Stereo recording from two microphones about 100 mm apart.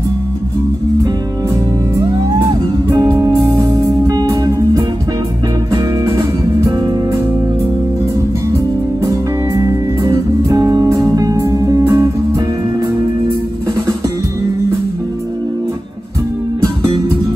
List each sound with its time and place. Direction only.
2.9 s music: 40° right (ahead or behind)
9.0 s music: 35° right (ahead or behind)